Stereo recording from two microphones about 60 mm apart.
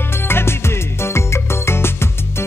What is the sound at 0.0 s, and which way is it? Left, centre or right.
Music, left.